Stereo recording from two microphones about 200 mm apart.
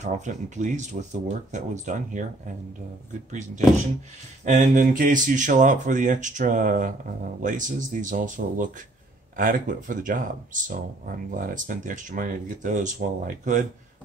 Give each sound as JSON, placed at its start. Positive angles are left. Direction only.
{"t": 0.0, "sound": "speech", "side_deg": -35}